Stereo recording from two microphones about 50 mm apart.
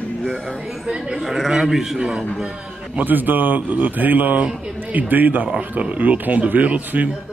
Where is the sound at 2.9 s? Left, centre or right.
Right.